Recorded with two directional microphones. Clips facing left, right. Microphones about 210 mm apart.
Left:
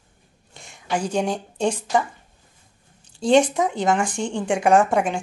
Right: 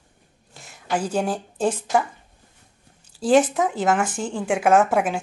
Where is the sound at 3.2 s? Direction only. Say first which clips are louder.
Even; 5° right (ahead or behind).